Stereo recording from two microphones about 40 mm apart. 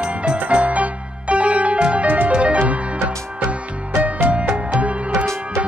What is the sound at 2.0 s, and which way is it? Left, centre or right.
Music, right.